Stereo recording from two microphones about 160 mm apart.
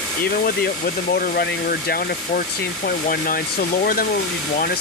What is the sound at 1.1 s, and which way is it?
Speech, 70° left (ahead or behind).